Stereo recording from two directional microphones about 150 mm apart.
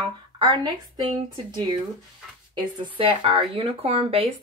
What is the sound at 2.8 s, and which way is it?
Speech, 35° right (ahead or behind).